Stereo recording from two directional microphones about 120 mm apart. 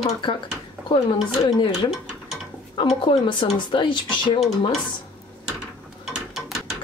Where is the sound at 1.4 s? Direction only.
35° left (ahead or behind).